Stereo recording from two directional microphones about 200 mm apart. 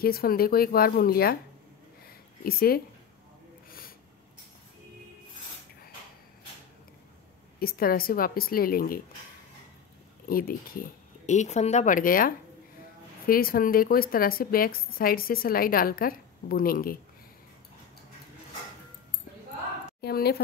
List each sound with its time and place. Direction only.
0.0 s a woman's voice: 50° left (ahead or behind)
2.0 s a sound: 50° left (ahead or behind)
7.5 s a woman's voice: 50° left (ahead or behind)
10.2 s a woman's voice: 45° left (ahead or behind)
20.0 s a woman's voice: 50° left (ahead or behind)